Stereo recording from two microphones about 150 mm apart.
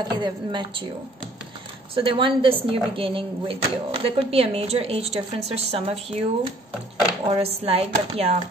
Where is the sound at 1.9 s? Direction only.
35° right (ahead or behind).